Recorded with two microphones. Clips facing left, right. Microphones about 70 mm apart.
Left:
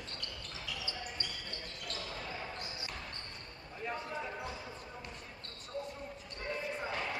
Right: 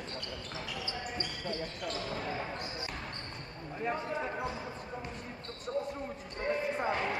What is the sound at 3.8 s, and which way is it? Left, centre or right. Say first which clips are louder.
Basketball bounce: right 5 dB; right.